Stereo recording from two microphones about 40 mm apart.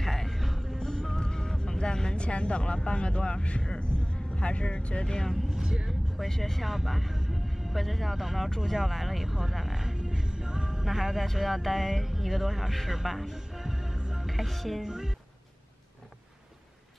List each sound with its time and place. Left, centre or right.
0.0 s music: centre
1.1 s speech: centre
5.6 s speech: centre
5.9 s speech: centre
6.6 s speech: centre
14.2 s music: centre
14.8 s music: centre